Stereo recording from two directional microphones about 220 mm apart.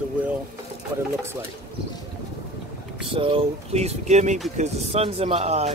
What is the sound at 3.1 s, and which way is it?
Speech, 25° right (ahead or behind).